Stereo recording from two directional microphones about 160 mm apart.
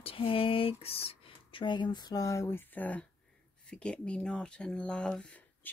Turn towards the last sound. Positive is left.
turn(degrees=5)  # may be behind; listen again after turning